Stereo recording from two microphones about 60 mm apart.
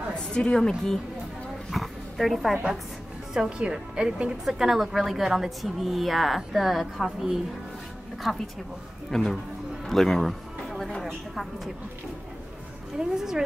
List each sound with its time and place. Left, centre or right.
0.1 s a woman's voice: centre
1.7 s dog: centre
3.3 s speech: centre
4.5 s a woman's voice: centre
9.8 s a sound: centre
10.9 s speech: centre
12.9 s speech: centre